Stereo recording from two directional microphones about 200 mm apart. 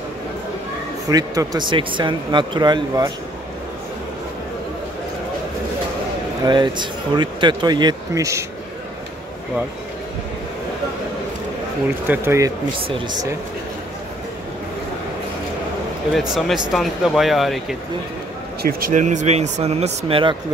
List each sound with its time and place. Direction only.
1.0 s speech: 15° right (ahead or behind)
6.4 s speech: 20° right (ahead or behind)
12.1 s speech: 15° right (ahead or behind)
16.1 s speech: centre (ahead or behind)
18.6 s speech: 45° right (ahead or behind); by 20.3 s 25° right (ahead or behind)